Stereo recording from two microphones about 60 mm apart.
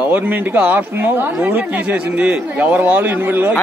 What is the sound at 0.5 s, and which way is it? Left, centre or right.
Speech, right.